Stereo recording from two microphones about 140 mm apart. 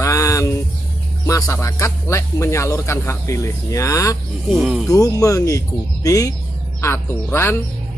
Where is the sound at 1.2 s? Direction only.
20° left (ahead or behind).